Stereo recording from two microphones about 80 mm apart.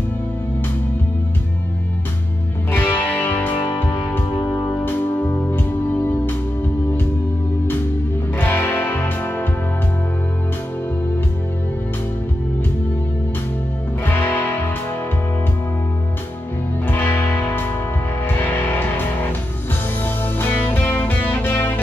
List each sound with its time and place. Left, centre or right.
2.7 s music: left
8.4 s music: left
14.0 s music: left
16.8 s music: left